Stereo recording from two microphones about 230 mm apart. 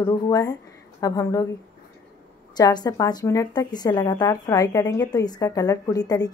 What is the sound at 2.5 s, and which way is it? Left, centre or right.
A woman's voice, centre.